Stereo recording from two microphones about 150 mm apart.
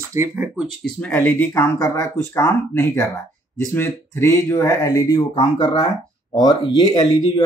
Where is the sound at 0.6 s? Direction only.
Centre (ahead or behind); by 5.2 s 20° left (ahead or behind).